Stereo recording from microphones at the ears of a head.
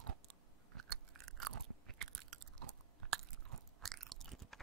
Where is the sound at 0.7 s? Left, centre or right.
Right.